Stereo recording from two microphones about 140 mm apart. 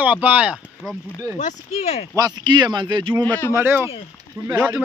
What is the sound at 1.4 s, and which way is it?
Speech, 55° left (ahead or behind).